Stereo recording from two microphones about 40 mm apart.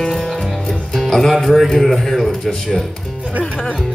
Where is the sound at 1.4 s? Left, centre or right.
Centre.